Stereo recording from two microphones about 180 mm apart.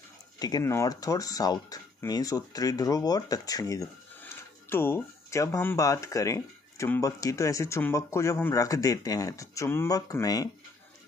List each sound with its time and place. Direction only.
0.4 s speech: 20° left (ahead or behind)